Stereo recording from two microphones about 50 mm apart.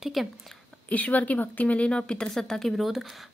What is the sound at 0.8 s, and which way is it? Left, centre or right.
A woman's voice, left.